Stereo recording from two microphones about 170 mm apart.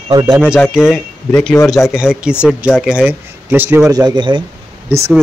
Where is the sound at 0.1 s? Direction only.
25° right (ahead or behind).